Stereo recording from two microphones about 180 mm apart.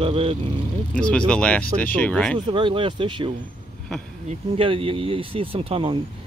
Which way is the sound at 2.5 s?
25° right (ahead or behind).